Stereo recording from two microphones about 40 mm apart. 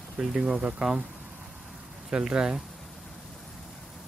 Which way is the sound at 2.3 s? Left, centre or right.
Centre.